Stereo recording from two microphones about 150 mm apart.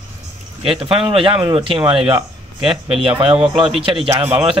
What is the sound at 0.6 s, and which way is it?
Speech, 35° right (ahead or behind).